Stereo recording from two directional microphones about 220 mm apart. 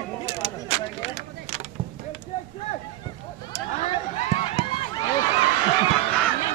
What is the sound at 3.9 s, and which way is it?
Run, 25° left (ahead or behind).